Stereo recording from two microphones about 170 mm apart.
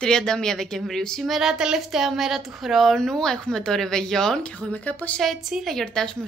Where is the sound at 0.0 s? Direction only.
5° left (ahead or behind).